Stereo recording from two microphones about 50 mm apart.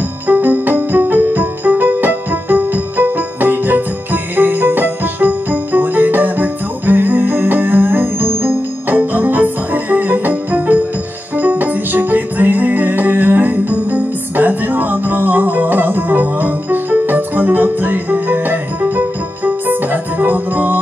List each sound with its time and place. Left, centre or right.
0.3 s music: right